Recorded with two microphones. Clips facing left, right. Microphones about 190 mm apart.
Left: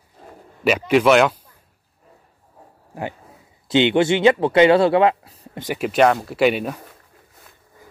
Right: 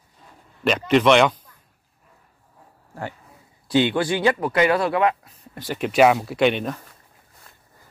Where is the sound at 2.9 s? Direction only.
15° left (ahead or behind); by 5.6 s 30° left (ahead or behind).